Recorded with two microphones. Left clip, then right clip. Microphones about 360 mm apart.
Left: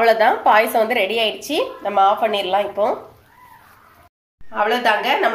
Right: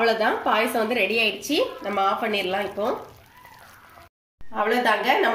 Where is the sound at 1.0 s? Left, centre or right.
Left.